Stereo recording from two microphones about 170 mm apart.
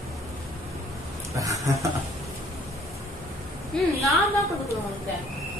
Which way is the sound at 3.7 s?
5° left (ahead or behind).